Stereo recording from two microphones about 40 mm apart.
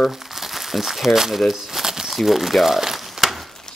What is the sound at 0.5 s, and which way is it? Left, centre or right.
Speech, centre.